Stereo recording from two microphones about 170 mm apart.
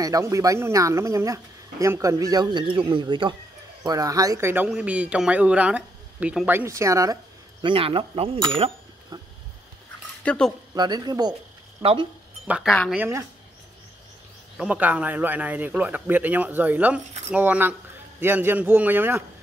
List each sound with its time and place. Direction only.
0.0 s a man's voice: 20° right (ahead or behind)
7.6 s cutlery: 30° right (ahead or behind)
9.1 s a sound: 20° right (ahead or behind)
10.2 s speech: 5° left (ahead or behind)
10.7 s speech: 25° right (ahead or behind)
11.8 s cutlery: 30° right (ahead or behind)
12.4 s a man's voice: 5° right (ahead or behind)
14.6 s a man's voice: 10° right (ahead or behind)